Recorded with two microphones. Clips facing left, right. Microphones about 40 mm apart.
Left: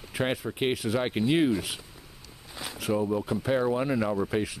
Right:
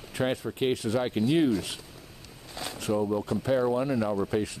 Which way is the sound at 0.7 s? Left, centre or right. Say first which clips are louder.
Even; centre.